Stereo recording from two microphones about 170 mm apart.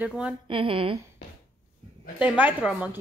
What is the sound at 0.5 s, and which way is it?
Speech, 30° right (ahead or behind).